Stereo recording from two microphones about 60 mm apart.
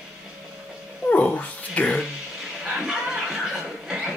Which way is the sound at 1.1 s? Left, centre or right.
Left.